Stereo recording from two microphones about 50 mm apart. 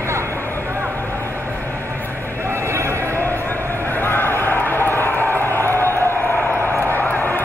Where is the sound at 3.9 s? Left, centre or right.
Left.